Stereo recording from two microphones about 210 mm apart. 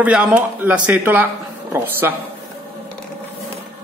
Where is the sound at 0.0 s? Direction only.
5° right (ahead or behind).